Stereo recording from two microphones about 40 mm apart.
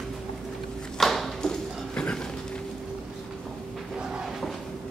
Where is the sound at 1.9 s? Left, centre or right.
Left.